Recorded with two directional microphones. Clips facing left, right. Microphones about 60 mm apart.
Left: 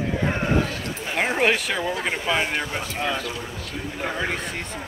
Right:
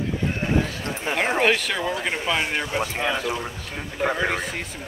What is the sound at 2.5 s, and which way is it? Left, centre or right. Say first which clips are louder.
A man's voice: right 2 dB; centre.